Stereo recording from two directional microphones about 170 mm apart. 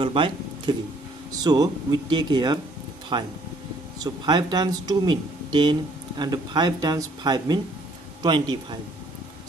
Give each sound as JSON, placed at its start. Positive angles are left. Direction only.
{"t": 0.0, "sound": "speech", "side_deg": -30}